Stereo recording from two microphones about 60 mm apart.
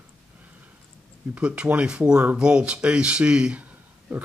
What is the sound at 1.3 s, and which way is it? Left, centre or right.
Speech, centre.